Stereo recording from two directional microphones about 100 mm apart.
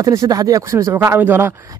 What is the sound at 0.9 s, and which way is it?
Speech, 20° right (ahead or behind).